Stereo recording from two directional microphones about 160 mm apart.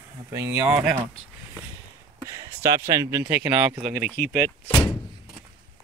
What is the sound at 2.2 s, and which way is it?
Speech, 20° right (ahead or behind).